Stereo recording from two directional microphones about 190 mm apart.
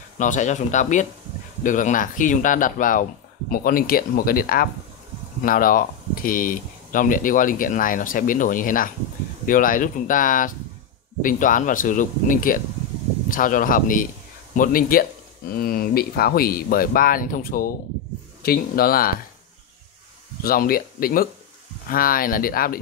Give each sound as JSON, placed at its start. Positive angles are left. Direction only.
{"t": 0.2, "sound": "speech", "side_deg": 40}
{"t": 20.4, "sound": "speech", "side_deg": 50}